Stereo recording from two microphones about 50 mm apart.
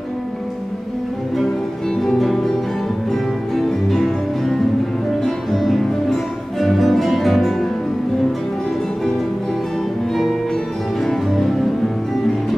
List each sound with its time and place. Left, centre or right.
2.0 s music: centre
11.1 s music: centre